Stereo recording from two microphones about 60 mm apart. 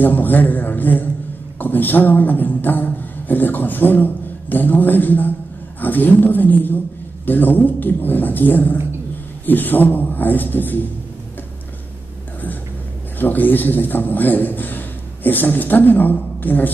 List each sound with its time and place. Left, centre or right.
0.0 s a man's voice: left
13.2 s a man's voice: left